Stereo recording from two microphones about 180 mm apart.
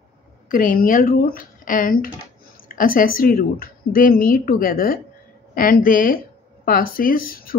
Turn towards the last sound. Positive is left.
turn(degrees=55)  # may be behind; listen again after turning